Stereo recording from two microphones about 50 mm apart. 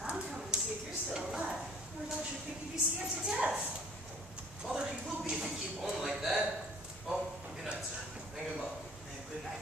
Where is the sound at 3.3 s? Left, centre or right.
Centre.